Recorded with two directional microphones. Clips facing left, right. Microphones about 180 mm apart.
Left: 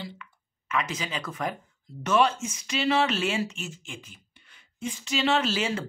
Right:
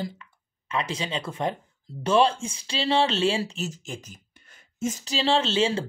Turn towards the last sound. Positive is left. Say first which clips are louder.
# right 3 dB
turn(degrees=-30)  # may be behind; listen again after turning